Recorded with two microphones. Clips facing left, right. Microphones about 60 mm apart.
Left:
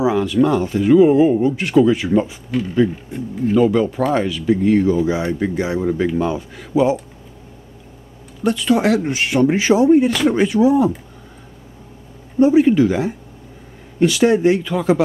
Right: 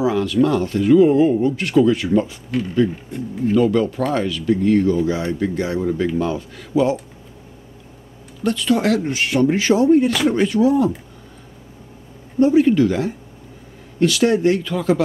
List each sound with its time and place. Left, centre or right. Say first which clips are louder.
0.0 s speech: left 1 dB; centre
8.5 s speech: left 2 dB; centre
12.4 s speech: left 2 dB; centre